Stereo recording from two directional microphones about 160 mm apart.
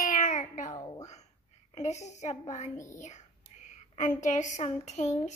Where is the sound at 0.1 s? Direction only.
55° left (ahead or behind).